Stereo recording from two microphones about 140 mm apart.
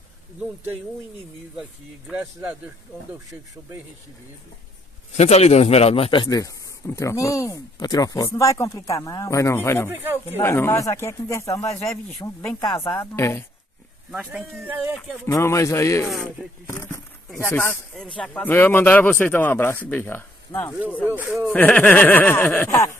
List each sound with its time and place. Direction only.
1.6 s speech: 10° right (ahead or behind)
5.1 s a man's voice: 50° left (ahead or behind); by 9.8 s 15° left (ahead or behind)
9.8 s speech: 15° right (ahead or behind)
10.4 s a man's voice: 15° left (ahead or behind)
14.6 s speech: 15° right (ahead or behind)
15.2 s a man's voice: 20° left (ahead or behind)
16.1 s speech: centre (ahead or behind)
16.6 s a man's voice: 20° left (ahead or behind)